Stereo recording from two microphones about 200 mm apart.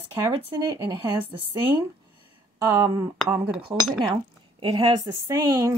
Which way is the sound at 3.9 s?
25° right (ahead or behind).